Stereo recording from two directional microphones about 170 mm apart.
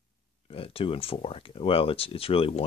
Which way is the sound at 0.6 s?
35° left (ahead or behind).